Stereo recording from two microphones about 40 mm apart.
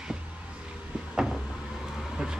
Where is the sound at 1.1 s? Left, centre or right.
Right.